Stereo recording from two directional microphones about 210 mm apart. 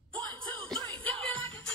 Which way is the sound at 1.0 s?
25° right (ahead or behind).